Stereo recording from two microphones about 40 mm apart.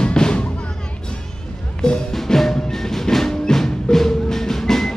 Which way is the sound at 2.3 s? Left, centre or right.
Centre.